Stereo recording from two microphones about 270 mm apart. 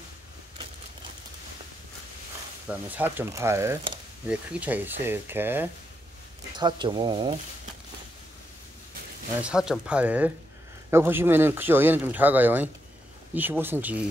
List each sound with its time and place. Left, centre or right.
2.7 s speech: centre
9.4 s speech: centre